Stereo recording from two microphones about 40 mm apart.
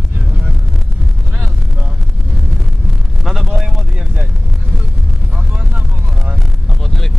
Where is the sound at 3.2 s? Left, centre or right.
Centre.